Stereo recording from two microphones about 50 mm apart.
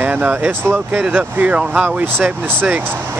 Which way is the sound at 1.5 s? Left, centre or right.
Right.